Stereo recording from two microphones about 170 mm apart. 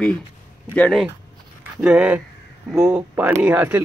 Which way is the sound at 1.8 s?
5° right (ahead or behind).